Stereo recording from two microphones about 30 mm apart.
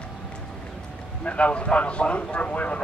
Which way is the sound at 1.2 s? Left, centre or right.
Left.